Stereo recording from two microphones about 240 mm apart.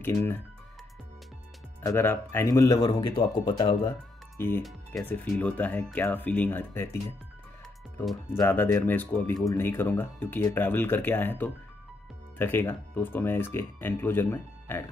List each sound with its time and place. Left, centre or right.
0.0 s speech: centre
1.8 s speech: centre
4.4 s speech: centre
8.0 s speech: centre